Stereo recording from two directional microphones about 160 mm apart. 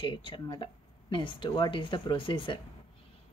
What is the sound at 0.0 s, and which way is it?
A woman's voice, 30° left (ahead or behind).